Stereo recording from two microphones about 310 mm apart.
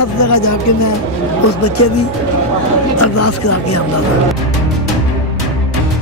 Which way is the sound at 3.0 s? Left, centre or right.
Left.